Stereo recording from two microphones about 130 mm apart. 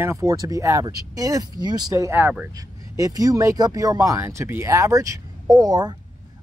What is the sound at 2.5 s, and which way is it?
Speech, 25° right (ahead or behind).